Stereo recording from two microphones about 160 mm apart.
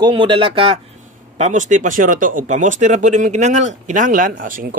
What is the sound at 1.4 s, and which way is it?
Speech, 50° right (ahead or behind).